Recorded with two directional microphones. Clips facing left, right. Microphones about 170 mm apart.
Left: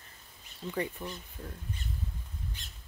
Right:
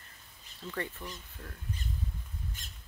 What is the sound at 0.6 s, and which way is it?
Speech, 15° left (ahead or behind).